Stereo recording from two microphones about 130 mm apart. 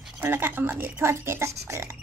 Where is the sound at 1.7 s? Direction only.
20° right (ahead or behind).